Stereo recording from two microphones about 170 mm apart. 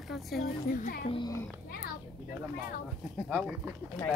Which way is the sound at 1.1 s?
25° left (ahead or behind).